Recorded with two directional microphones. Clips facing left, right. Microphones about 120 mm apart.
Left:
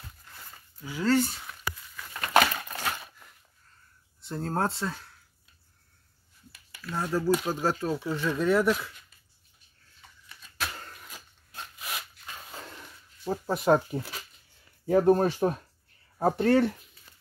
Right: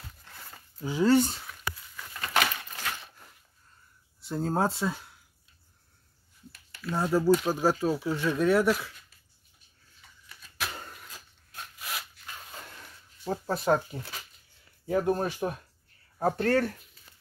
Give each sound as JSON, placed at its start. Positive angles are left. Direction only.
{"t": 0.7, "sound": "speech", "side_deg": -25}
{"t": 1.0, "sound": "speech", "side_deg": -15}
{"t": 2.3, "sound": "crushing", "side_deg": 45}
{"t": 4.2, "sound": "speech", "side_deg": -5}
{"t": 6.9, "sound": "speech", "side_deg": -15}
{"t": 10.7, "sound": "a sound", "side_deg": -15}
{"t": 11.1, "sound": "dog", "side_deg": 15}
{"t": 13.5, "sound": "speech", "side_deg": 20}
{"t": 16.2, "sound": "speech", "side_deg": 15}